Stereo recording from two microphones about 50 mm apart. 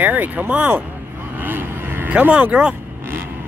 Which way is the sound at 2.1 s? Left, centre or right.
Right.